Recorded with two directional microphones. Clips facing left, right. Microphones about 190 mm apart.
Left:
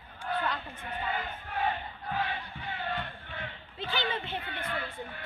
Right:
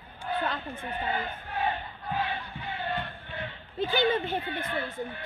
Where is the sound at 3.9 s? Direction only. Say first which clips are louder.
Right 7 dB; 45° right (ahead or behind).